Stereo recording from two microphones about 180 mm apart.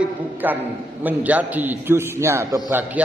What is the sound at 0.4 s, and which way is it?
A man's voice, 10° right (ahead or behind).